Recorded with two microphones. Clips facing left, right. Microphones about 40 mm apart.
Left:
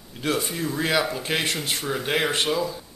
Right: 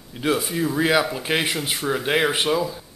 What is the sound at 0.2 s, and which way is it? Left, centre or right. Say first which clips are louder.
Speech: right 4 dB; centre.